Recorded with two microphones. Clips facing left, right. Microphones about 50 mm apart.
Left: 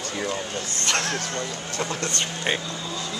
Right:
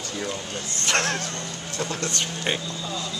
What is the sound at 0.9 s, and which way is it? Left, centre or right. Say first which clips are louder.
Speech: right 2 dB; right.